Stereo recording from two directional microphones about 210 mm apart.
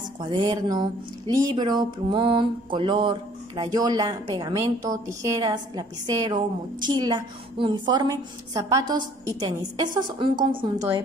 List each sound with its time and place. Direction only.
0.2 s speech: 20° right (ahead or behind)